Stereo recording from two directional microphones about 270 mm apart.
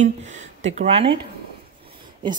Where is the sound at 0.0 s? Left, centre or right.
Right.